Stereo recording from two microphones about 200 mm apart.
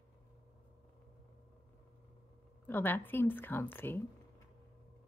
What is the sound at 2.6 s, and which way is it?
Speech, 10° left (ahead or behind).